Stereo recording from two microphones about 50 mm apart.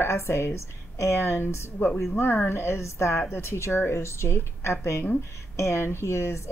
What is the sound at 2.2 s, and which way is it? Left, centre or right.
Speech, left.